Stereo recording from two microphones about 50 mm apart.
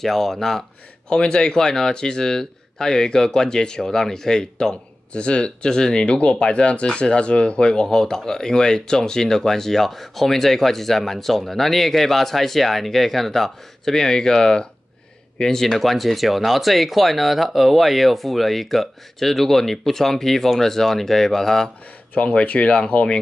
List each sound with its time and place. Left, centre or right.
0.0 s speech: centre
22.1 s speech: left